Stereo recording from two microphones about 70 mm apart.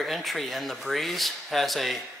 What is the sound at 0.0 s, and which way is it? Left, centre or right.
Speech, centre.